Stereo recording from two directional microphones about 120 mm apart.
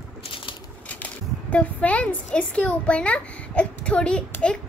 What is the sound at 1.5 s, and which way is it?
A woman's voice, 10° left (ahead or behind).